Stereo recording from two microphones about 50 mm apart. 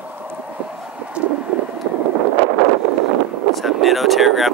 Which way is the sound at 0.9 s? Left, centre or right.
Right.